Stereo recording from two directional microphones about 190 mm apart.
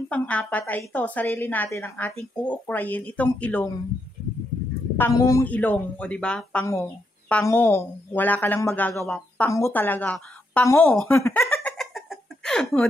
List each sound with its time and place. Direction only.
0.1 s a woman's voice: 5° left (ahead or behind)
4.9 s a woman's voice: 15° left (ahead or behind)
11.1 s giggle: 15° left (ahead or behind)